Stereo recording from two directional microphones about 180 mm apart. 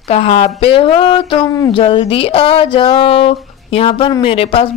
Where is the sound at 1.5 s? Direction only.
20° left (ahead or behind).